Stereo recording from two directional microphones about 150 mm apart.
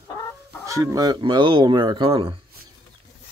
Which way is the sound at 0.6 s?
20° right (ahead or behind).